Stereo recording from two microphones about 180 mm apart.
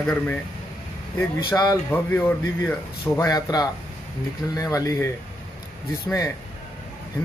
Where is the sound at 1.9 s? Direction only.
10° left (ahead or behind).